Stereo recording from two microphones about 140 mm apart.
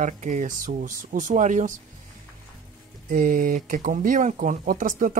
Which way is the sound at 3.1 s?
85° right.